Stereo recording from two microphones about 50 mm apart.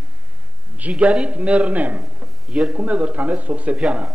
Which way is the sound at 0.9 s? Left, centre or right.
Right.